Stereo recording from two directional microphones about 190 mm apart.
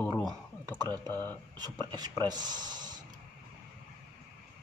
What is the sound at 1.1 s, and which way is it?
Speech, 10° left (ahead or behind).